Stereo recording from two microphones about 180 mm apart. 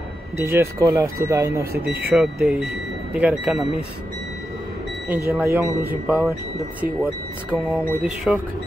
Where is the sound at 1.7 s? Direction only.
60° right (ahead or behind).